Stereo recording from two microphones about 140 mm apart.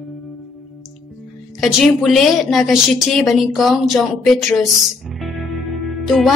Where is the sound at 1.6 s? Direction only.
Centre (ahead or behind).